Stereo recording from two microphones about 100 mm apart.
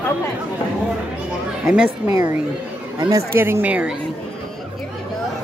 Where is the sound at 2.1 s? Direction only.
30° right (ahead or behind); by 3.9 s 15° right (ahead or behind).